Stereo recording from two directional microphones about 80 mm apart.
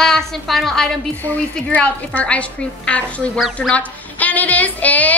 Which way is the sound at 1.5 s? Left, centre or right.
Centre.